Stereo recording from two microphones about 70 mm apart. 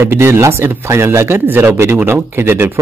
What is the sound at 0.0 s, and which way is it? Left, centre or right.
Speech, right.